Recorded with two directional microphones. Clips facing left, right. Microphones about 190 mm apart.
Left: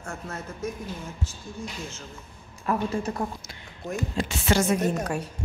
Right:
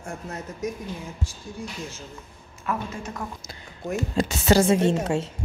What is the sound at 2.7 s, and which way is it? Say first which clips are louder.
Speech: left 4 dB; 35° left (ahead or behind).